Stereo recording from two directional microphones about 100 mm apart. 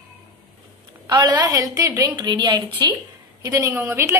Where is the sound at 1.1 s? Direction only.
45° right (ahead or behind).